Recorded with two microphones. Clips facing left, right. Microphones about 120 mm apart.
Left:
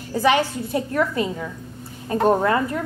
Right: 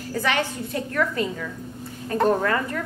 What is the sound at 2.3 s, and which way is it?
Speech, 25° left (ahead or behind).